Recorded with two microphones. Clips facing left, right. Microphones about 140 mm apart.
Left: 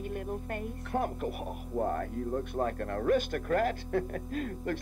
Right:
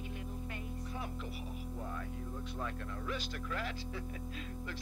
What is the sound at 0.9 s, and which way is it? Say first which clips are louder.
Speech: left 15 dB; 55° left (ahead or behind).